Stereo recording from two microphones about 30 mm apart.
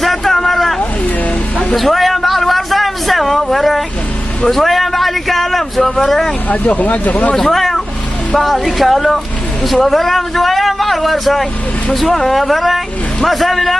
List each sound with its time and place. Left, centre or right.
0.0 s vehicle: centre
1.8 s a sound: centre
6.5 s speech: left
7.5 s speech: centre